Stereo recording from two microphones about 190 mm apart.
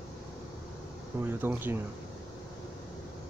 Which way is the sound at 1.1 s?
10° right (ahead or behind).